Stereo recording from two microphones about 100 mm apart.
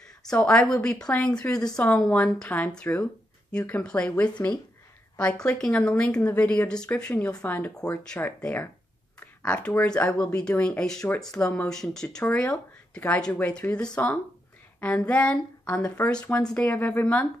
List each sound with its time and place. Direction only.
0.2 s a woman's voice: 5° left (ahead or behind)